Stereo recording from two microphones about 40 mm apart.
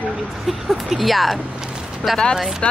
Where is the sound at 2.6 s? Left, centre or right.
Left.